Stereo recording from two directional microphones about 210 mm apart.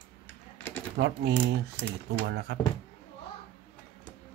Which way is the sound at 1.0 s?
55° right (ahead or behind).